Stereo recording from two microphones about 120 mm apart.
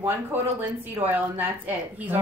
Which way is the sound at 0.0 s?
15° right (ahead or behind).